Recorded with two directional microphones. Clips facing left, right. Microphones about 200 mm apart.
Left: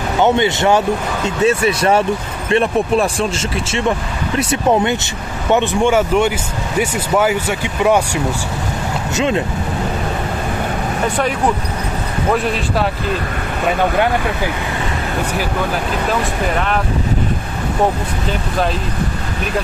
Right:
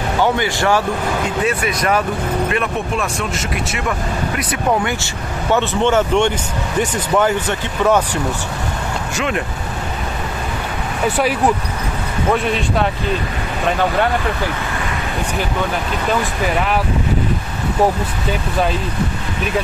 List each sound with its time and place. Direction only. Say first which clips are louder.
0.2 s speech: left 4 dB; 20° left (ahead or behind)
4.4 s speech: left 5 dB; 25° left (ahead or behind)
5.5 s speech: left 2 dB; 15° left (ahead or behind)
9.1 s speech: left 5 dB; 25° left (ahead or behind)
16.1 s speech: right 2 dB; 5° right (ahead or behind)